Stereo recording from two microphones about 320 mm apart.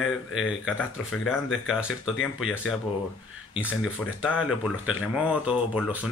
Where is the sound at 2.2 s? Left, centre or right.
Centre.